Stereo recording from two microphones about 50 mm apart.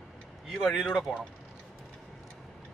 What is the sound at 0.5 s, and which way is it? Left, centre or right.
Speech, centre.